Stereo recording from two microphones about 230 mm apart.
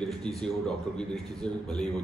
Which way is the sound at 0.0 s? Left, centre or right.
Centre.